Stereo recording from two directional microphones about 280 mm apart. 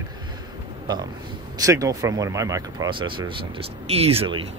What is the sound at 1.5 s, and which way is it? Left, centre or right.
Speech, centre.